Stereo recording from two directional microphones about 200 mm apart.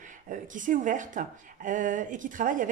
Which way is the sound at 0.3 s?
40° right (ahead or behind).